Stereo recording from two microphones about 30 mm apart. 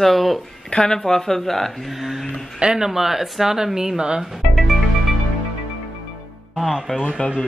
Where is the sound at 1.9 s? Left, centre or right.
Centre.